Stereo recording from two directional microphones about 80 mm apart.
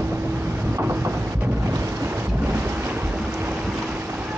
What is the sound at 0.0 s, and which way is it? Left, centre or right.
Boat, right.